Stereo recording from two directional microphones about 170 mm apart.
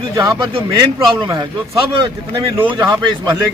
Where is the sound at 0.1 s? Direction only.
20° right (ahead or behind).